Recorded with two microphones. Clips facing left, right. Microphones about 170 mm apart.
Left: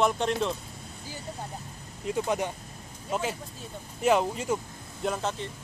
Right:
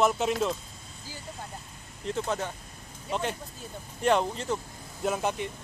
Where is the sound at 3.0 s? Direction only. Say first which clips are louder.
Left 1 dB; 5° left (ahead or behind).